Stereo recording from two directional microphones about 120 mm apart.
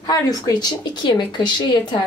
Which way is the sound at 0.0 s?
35° left (ahead or behind).